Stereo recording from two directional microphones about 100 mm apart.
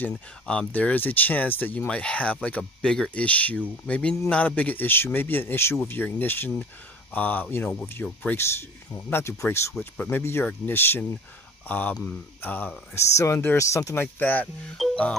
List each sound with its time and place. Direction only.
0.5 s speech: 10° left (ahead or behind)
13.1 s speech: 30° left (ahead or behind)
14.0 s speech: 15° left (ahead or behind)
14.8 s music: centre (ahead or behind)